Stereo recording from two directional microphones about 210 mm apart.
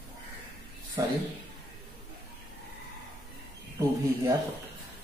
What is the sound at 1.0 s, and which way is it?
Speech, 15° right (ahead or behind).